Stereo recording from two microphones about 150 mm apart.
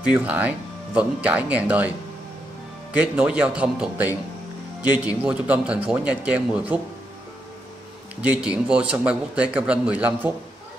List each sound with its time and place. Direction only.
0.0 s a man's voice: 10° right (ahead or behind)
2.9 s a man's voice: 10° right (ahead or behind)
8.2 s a man's voice: 10° right (ahead or behind)